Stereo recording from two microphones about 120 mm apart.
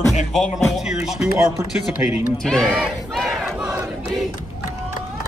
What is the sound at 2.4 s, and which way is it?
Battle cry, 5° left (ahead or behind).